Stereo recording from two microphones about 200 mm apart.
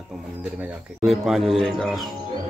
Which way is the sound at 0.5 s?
5° right (ahead or behind).